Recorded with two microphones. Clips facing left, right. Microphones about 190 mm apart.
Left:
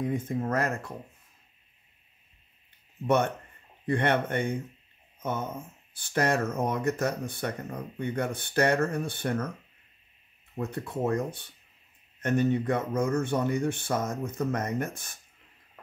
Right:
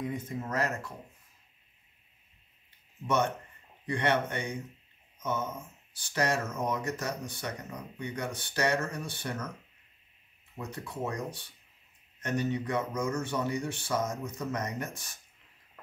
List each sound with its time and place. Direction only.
0.0 s speech: 50° left (ahead or behind)
3.8 s speech: 55° left (ahead or behind)
10.6 s speech: 55° left (ahead or behind)